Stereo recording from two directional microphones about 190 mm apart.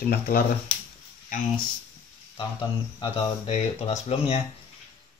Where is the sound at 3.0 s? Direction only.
25° left (ahead or behind).